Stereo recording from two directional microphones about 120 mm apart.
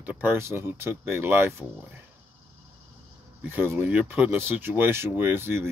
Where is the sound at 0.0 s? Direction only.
15° right (ahead or behind).